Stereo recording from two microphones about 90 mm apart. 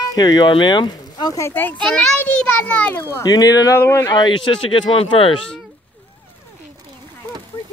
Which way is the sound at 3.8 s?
30° left (ahead or behind).